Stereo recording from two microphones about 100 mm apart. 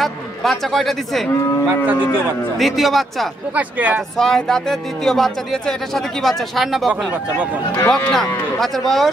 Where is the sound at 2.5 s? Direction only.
Centre (ahead or behind).